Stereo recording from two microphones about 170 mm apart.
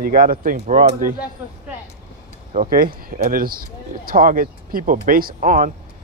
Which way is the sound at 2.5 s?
55° right (ahead or behind).